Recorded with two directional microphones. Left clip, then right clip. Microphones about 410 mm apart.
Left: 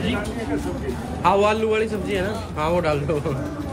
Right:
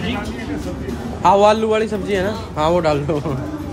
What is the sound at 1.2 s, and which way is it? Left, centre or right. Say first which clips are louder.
A man's voice: right 6 dB; centre.